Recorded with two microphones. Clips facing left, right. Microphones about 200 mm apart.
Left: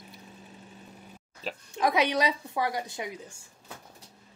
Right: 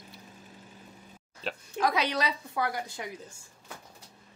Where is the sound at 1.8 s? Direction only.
20° left (ahead or behind).